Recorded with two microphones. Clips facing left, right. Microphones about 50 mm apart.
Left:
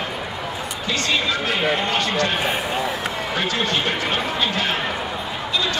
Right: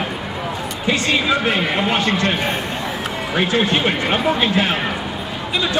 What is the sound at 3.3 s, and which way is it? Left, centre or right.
A man's voice, centre.